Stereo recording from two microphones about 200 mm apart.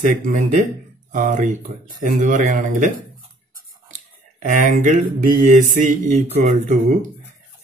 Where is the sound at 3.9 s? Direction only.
40° right (ahead or behind).